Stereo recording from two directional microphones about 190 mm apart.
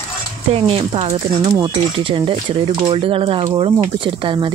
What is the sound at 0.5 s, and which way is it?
Speech, 30° right (ahead or behind).